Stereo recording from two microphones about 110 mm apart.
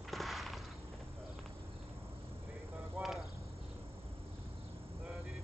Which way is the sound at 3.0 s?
20° right (ahead or behind).